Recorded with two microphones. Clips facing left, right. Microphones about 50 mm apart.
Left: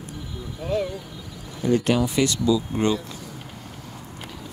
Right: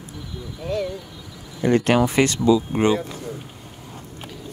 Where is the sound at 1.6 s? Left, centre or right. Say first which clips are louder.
Right 3 dB; right.